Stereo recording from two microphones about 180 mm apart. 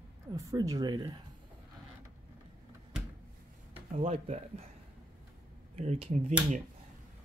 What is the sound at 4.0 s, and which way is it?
Speech, 35° right (ahead or behind).